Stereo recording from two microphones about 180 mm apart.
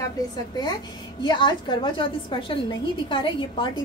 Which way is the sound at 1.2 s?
25° left (ahead or behind).